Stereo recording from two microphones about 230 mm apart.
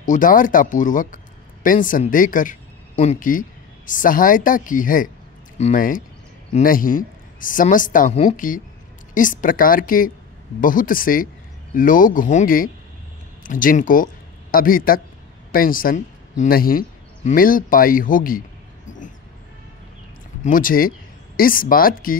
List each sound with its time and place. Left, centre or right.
0.0 s a man's voice: left
18.9 s dog: left
20.4 s speech: left